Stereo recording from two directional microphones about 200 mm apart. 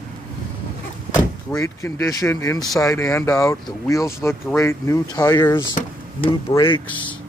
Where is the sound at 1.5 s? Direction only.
15° left (ahead or behind).